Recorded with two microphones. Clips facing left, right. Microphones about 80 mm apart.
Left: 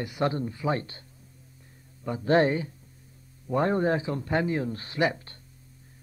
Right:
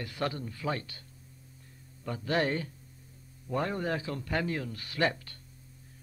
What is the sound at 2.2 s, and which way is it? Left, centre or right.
A man's voice, left.